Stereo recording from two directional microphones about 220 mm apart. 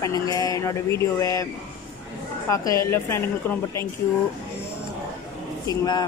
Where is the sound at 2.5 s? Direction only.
15° left (ahead or behind).